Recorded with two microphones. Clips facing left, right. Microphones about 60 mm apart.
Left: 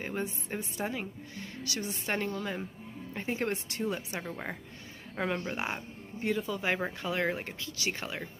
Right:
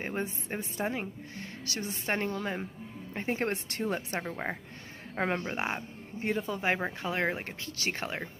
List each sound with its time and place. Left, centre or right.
0.0 s a woman's voice: right
2.3 s speech: centre
3.3 s a woman's voice: right
4.3 s speech: centre
6.2 s speech: right
7.4 s a woman's voice: right